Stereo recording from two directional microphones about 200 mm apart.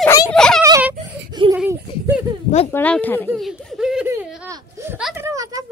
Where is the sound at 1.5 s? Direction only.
10° right (ahead or behind).